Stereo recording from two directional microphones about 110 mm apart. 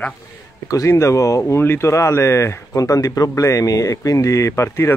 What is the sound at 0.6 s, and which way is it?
Speech, 30° left (ahead or behind).